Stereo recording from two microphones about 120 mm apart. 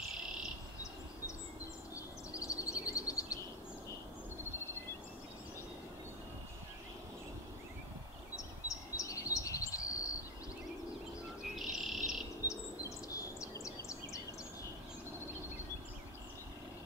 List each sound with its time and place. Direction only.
2.3 s a sound: 30° left (ahead or behind)
8.6 s chirp: 30° left (ahead or behind)
11.5 s chirp: centre (ahead or behind)
12.4 s bird: 25° left (ahead or behind)